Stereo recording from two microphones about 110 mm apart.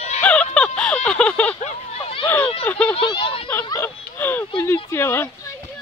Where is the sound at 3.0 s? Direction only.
45° left (ahead or behind).